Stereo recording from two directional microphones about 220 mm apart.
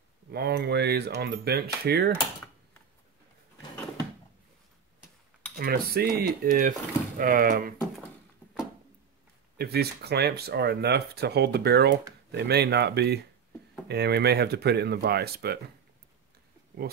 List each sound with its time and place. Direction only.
0.3 s speech: 45° right (ahead or behind)
2.1 s typing: 10° left (ahead or behind)
5.6 s speech: 45° right (ahead or behind)
9.6 s speech: 45° right (ahead or behind)